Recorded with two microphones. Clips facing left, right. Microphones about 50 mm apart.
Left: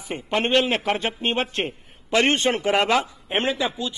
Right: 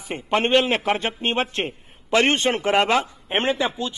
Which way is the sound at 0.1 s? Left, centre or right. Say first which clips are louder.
Right 2 dB; centre.